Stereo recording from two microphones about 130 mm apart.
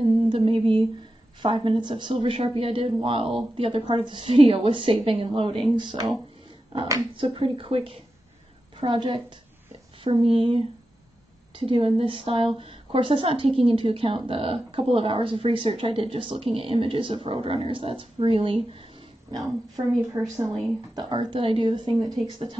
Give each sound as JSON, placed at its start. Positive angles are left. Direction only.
{"t": 0.3, "sound": "a sound", "side_deg": -45}
{"t": 1.4, "sound": "a woman's voice", "side_deg": -40}
{"t": 7.2, "sound": "a woman's voice", "side_deg": -40}
{"t": 20.2, "sound": "speech", "side_deg": -20}
{"t": 20.9, "sound": "speech", "side_deg": -35}